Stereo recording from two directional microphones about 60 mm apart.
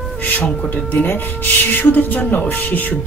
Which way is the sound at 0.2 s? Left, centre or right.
Left.